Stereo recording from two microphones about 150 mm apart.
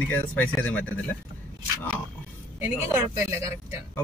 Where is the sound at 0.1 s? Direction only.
10° left (ahead or behind).